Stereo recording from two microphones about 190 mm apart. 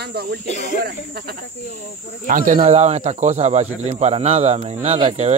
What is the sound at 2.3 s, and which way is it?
Speech, 45° right (ahead or behind).